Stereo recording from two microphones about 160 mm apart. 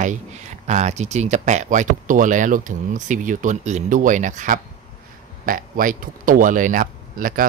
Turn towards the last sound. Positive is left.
turn(degrees=-60)  # may be behind; listen again after turning